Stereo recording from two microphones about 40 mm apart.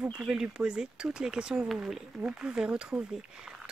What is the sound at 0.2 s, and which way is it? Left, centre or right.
Speech, right.